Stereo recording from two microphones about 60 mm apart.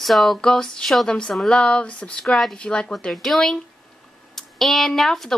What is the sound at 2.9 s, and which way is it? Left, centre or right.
Speech, centre.